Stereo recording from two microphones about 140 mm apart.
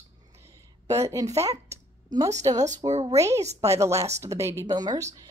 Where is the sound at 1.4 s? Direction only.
25° right (ahead or behind).